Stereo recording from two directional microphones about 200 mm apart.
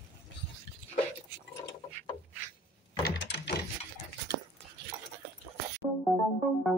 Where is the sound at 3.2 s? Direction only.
60° left (ahead or behind).